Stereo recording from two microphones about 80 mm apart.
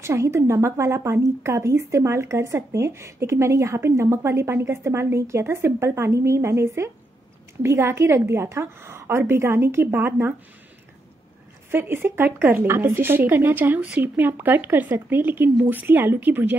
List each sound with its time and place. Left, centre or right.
0.0 s speech: right
11.7 s a woman's voice: right